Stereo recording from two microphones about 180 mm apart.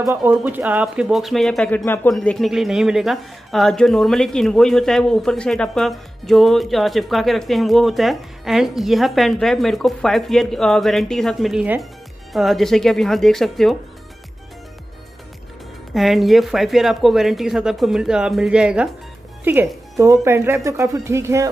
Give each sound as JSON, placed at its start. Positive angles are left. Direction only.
{"t": 0.1, "sound": "speech", "side_deg": -10}
{"t": 15.9, "sound": "speech", "side_deg": 0}